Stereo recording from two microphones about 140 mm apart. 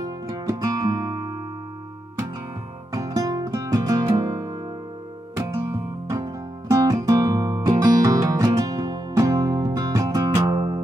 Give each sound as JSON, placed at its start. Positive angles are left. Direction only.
{"t": 0.0, "sound": "music", "side_deg": -25}
{"t": 2.9, "sound": "music", "side_deg": -25}